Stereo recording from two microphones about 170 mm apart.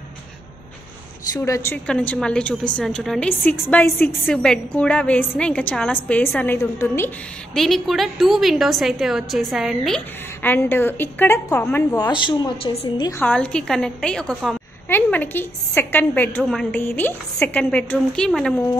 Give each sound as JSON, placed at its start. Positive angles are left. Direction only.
{"t": 1.3, "sound": "a woman's voice", "side_deg": 20}
{"t": 1.9, "sound": "a woman's voice", "side_deg": 5}
{"t": 7.5, "sound": "a woman's voice", "side_deg": 0}
{"t": 12.1, "sound": "a woman's voice", "side_deg": 25}
{"t": 13.2, "sound": "a woman's voice", "side_deg": 5}
{"t": 14.9, "sound": "a woman's voice", "side_deg": 10}